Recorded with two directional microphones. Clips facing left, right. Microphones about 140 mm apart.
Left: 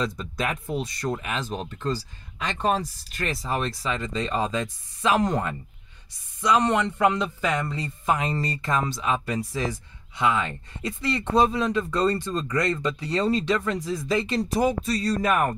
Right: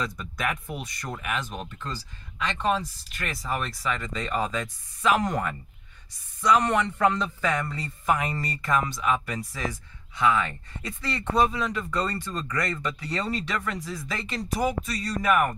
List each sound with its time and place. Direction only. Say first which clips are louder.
0.0 s a man's voice: left 3 dB; 25° left (ahead or behind)